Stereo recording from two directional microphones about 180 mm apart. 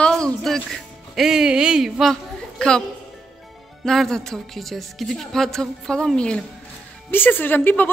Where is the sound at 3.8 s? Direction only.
Centre (ahead or behind).